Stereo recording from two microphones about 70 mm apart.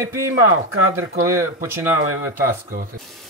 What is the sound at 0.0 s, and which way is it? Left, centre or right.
Speech, right.